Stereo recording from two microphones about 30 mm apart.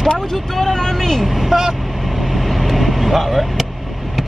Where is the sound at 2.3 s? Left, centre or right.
Centre.